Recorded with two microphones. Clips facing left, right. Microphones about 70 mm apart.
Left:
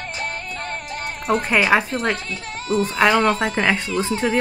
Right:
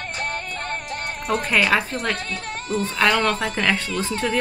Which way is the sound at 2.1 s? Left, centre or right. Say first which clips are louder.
Right 1 dB; right.